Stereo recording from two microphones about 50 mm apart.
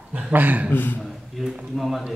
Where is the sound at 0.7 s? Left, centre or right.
Left.